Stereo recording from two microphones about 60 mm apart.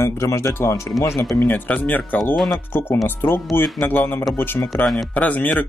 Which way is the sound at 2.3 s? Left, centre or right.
Centre.